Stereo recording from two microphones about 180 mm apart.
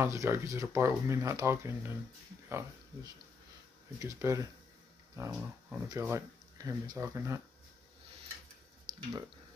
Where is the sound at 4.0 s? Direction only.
20° right (ahead or behind).